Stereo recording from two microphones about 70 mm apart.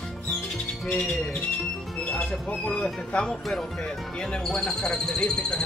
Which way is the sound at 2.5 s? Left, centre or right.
Centre.